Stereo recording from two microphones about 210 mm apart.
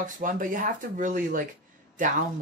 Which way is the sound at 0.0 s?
40° right (ahead or behind).